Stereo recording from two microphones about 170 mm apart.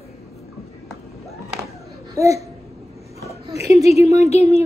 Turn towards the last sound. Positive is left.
turn(degrees=40)  # may be behind; listen again after turning